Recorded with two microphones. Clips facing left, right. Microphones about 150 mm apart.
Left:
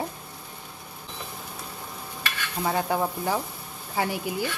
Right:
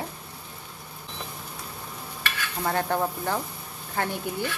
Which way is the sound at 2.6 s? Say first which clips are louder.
Left 1 dB; 5° left (ahead or behind).